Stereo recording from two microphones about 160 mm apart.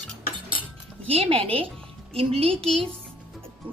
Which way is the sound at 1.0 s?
35° right (ahead or behind).